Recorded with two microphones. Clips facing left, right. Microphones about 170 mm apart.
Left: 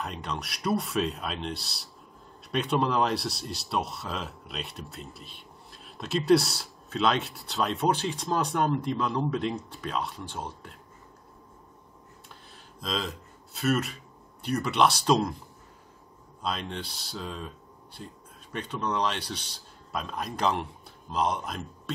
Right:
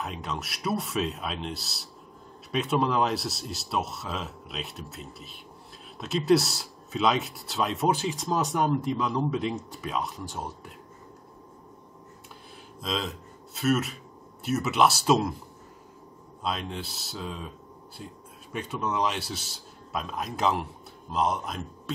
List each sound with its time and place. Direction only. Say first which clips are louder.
0.0 s speech: right 1 dB; centre (ahead or behind)
12.8 s speech: right 1 dB; centre (ahead or behind)
16.4 s speech: right 1 dB; 5° right (ahead or behind)
18.5 s speech: even; 5° right (ahead or behind)